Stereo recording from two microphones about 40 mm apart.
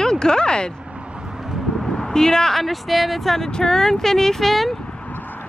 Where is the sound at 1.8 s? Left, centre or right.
Centre.